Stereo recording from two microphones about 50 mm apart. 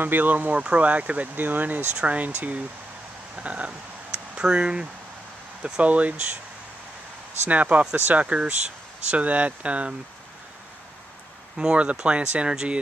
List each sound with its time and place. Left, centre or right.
0.0 s speech: right
3.3 s a sound: right
5.6 s speech: right
7.4 s speech: right
11.5 s speech: right